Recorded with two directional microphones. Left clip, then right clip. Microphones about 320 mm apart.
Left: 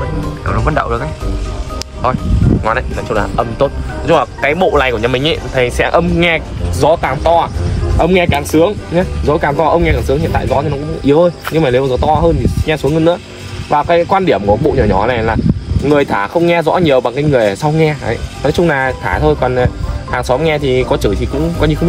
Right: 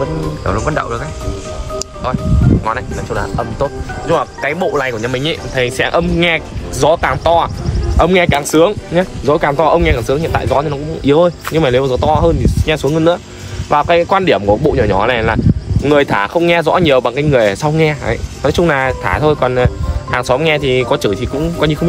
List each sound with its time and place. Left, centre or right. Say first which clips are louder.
0.5 s speech: left 2 dB; centre
2.0 s speech: left 3 dB; left; by 21.7 s centre